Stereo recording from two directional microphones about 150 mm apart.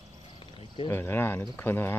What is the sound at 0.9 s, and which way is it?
Speech, 15° left (ahead or behind).